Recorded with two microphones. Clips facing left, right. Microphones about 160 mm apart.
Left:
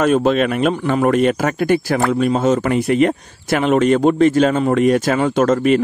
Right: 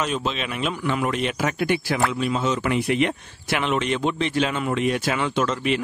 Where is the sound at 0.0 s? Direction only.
50° left (ahead or behind).